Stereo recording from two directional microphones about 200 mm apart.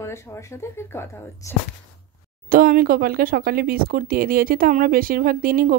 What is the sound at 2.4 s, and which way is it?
Speech, 45° right (ahead or behind).